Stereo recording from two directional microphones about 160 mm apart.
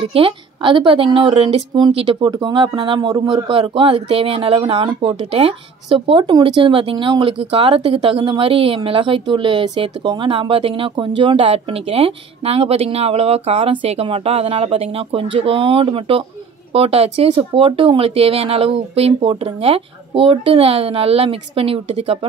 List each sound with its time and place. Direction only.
0.0 s a woman's voice: 35° right (ahead or behind)